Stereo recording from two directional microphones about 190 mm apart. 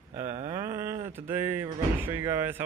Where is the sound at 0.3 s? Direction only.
35° right (ahead or behind).